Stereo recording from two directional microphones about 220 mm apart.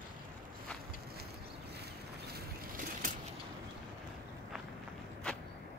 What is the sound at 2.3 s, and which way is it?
Vehicle, 40° right (ahead or behind).